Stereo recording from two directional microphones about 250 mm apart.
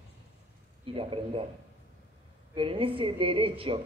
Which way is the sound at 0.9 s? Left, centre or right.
Right.